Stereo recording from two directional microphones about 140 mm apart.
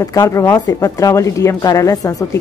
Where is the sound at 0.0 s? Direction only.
25° left (ahead or behind).